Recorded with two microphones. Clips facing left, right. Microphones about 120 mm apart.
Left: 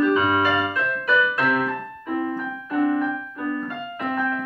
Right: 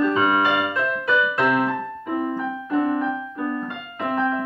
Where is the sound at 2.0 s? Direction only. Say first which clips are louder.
Even; 20° right (ahead or behind).